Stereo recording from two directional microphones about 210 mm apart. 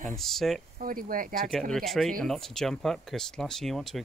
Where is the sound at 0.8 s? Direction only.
40° right (ahead or behind).